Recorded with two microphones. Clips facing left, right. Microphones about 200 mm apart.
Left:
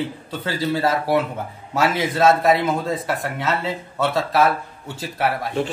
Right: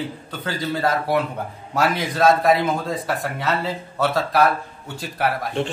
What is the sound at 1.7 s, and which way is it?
A man's voice, centre (ahead or behind).